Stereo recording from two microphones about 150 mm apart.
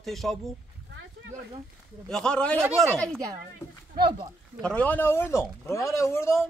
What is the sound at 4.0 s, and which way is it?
Speech, 30° right (ahead or behind).